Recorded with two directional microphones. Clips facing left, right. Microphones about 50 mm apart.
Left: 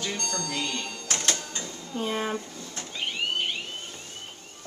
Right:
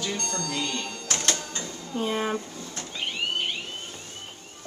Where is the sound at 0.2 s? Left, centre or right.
Right.